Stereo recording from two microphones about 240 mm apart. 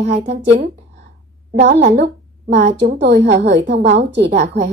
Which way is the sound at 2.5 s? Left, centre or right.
Right.